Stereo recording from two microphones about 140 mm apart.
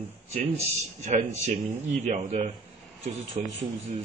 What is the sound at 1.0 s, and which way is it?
Speech, 55° right (ahead or behind).